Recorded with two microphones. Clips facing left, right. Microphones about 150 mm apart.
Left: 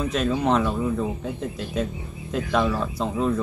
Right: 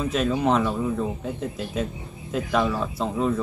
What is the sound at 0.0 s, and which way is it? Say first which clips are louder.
Speech: even; centre (ahead or behind).